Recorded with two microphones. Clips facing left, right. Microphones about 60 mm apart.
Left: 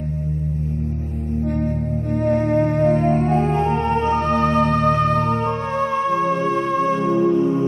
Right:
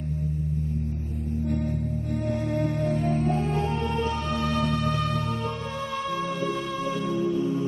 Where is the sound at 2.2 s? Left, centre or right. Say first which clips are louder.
Left 10 dB; left.